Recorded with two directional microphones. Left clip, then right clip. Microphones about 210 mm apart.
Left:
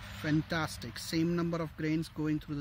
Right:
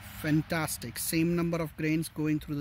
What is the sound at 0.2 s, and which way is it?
Speech, 35° right (ahead or behind).